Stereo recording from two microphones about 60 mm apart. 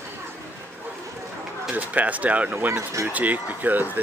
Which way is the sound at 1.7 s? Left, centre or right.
Right.